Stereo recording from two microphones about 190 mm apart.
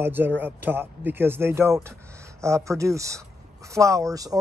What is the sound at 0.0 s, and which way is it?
Speech, 10° right (ahead or behind).